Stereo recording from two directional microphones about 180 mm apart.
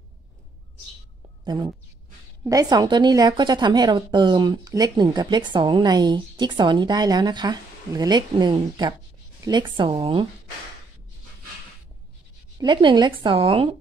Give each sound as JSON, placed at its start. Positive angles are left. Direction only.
{"t": 1.4, "sound": "speech", "side_deg": -25}
{"t": 12.5, "sound": "speech", "side_deg": -25}